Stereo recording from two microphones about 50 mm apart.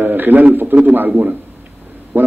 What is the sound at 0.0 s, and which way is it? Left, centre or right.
A man's voice, right.